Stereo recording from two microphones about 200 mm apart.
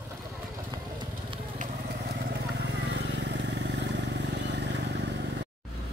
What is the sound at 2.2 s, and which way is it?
Vehicle, 60° right (ahead or behind).